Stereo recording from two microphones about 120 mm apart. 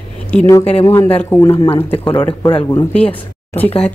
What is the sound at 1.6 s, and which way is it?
Speech, 50° left (ahead or behind).